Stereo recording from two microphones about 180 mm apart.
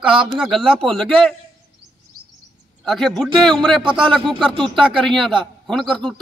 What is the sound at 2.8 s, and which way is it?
A man's voice, centre (ahead or behind).